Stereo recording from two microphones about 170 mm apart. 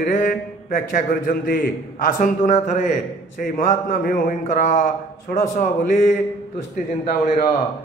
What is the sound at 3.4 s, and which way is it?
Speech, 50° left (ahead or behind).